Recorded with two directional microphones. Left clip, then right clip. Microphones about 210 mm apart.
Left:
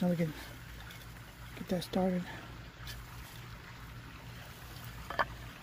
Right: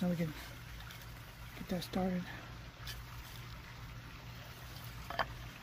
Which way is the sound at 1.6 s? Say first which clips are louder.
Left 5 dB; 35° left (ahead or behind).